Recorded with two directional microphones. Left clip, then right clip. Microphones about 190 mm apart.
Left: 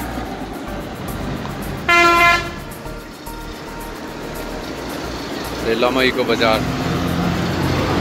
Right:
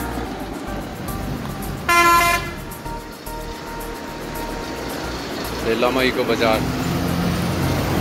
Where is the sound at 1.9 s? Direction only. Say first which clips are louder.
Left 3 dB; 40° left (ahead or behind).